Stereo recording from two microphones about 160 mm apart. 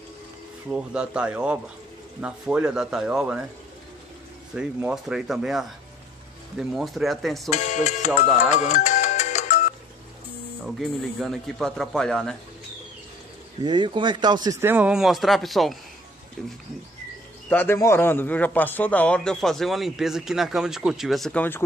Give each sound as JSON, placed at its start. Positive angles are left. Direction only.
{"t": 0.7, "sound": "speech", "side_deg": -5}
{"t": 4.6, "sound": "speech", "side_deg": -10}
{"t": 6.7, "sound": "speech", "side_deg": 0}
{"t": 7.4, "sound": "speech", "side_deg": 50}
{"t": 8.5, "sound": "music", "side_deg": 45}
{"t": 10.6, "sound": "speech", "side_deg": 0}
{"t": 13.7, "sound": "speech", "side_deg": -30}
{"t": 17.5, "sound": "a man's voice", "side_deg": 15}